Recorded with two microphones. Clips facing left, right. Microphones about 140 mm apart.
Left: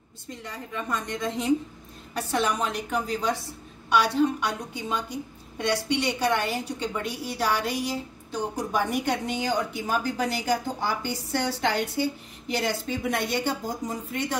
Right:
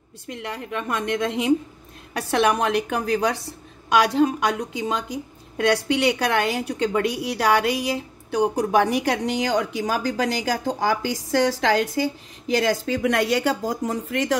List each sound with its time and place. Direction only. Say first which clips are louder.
0.3 s a woman's voice: right 6 dB; 70° right (ahead or behind)
3.9 s a woman's voice: right 4 dB; 90° right